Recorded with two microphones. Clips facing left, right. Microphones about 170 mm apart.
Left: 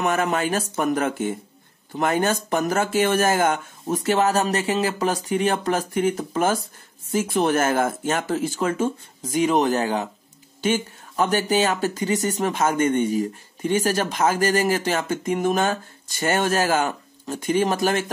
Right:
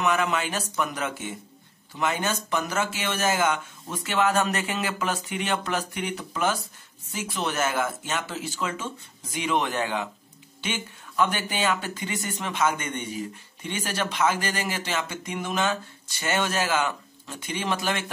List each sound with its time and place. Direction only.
0.0 s speech: 45° left (ahead or behind)